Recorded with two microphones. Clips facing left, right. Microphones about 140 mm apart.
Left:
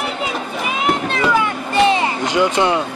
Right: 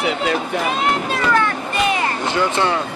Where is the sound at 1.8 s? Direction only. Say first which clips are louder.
Left 5 dB; 30° left (ahead or behind).